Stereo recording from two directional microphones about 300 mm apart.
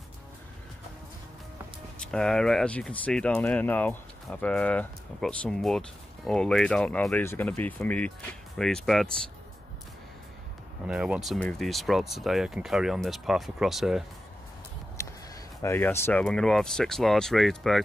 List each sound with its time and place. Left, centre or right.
2.0 s speech: centre
10.9 s speech: centre
15.0 s a sound: centre
15.6 s speech: centre